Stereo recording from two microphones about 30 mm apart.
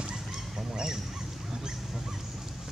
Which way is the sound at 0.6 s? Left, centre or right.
Right.